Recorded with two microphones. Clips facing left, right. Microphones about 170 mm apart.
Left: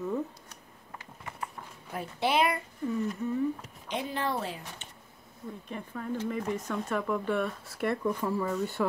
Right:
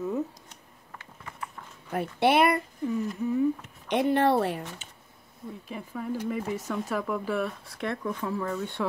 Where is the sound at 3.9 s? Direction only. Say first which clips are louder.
Right 9 dB; 65° right (ahead or behind).